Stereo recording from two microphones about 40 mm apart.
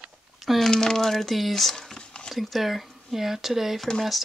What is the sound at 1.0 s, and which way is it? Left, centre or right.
Speech, centre.